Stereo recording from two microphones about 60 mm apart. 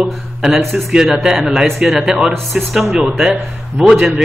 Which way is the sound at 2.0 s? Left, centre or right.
Centre.